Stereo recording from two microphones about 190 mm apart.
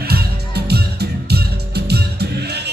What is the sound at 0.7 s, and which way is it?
Music, 55° right (ahead or behind).